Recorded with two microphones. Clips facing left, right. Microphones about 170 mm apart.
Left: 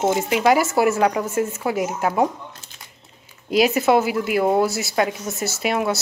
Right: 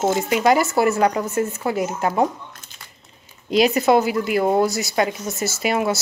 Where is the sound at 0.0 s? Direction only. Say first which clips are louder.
Even; centre (ahead or behind).